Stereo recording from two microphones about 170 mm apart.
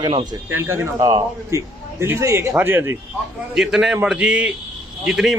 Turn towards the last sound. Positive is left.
turn(degrees=-5)  # may be behind; listen again after turning